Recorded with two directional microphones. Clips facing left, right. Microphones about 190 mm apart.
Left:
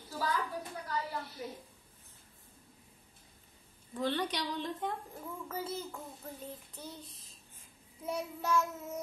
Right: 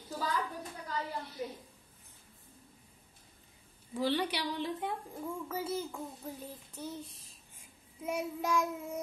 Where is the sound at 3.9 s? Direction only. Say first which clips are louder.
Right 2 dB; 10° right (ahead or behind).